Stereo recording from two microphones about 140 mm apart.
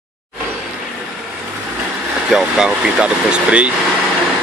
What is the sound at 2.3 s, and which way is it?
Speech, 5° right (ahead or behind).